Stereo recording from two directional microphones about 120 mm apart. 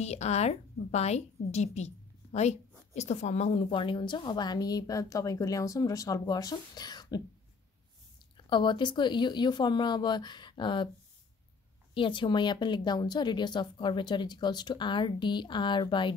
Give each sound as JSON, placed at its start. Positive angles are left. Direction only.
{"t": 0.0, "sound": "a woman's voice", "side_deg": 65}
{"t": 3.7, "sound": "a woman's voice", "side_deg": 45}
{"t": 8.5, "sound": "a woman's voice", "side_deg": 40}
{"t": 11.9, "sound": "a woman's voice", "side_deg": 45}